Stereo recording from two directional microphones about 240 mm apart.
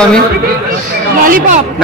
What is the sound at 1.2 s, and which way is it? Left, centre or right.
Speech, right.